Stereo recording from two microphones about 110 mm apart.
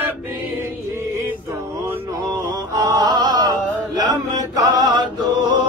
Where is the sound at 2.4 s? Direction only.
35° right (ahead or behind).